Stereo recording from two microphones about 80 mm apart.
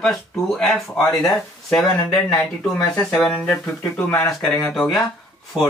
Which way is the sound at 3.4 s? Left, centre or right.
Centre.